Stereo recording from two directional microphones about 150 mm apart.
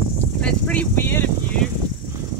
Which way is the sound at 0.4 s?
10° left (ahead or behind).